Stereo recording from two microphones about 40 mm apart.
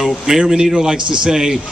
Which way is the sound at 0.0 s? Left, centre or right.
Centre.